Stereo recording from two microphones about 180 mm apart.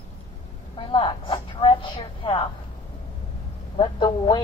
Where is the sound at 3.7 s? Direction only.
25° left (ahead or behind).